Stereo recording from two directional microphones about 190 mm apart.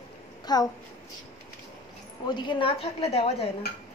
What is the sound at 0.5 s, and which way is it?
Speech, 20° left (ahead or behind).